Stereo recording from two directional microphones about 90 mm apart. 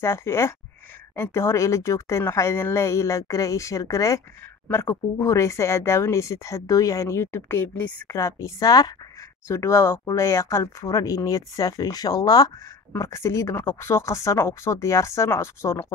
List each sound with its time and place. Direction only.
0.0 s speech: 30° left (ahead or behind)
9.5 s speech: 30° left (ahead or behind)
12.9 s speech: 30° left (ahead or behind)